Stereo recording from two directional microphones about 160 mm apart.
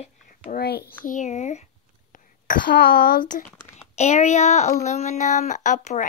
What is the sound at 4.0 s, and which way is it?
Speech, 45° left (ahead or behind).